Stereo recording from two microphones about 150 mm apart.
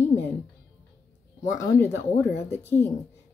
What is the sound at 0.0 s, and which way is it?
Music, 15° left (ahead or behind).